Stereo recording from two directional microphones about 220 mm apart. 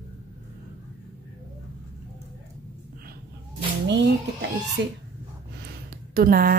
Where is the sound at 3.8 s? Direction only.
50° right (ahead or behind).